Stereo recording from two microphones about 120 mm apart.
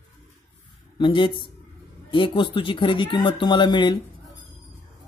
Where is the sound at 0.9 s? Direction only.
40° left (ahead or behind).